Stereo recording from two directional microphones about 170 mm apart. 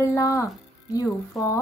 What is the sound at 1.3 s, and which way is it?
Speech, centre (ahead or behind).